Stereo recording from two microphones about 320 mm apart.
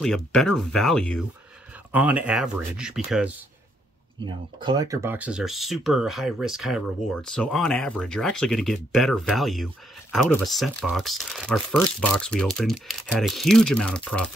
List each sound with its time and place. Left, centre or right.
0.0 s speech: centre
4.2 s speech: centre